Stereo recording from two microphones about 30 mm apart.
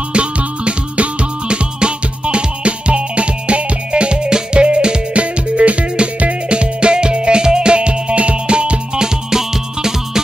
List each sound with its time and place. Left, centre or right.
0.1 s music: right
1.5 s music: right
6.5 s music: right
9.0 s music: centre